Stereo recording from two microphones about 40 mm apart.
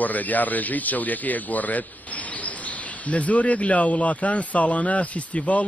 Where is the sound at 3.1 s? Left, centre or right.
Left.